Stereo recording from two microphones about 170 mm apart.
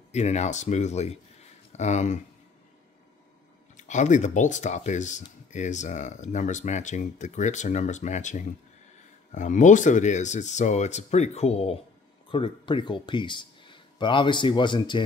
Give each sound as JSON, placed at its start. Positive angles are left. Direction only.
{"t": 0.1, "sound": "speech", "side_deg": 40}
{"t": 3.7, "sound": "speech", "side_deg": 45}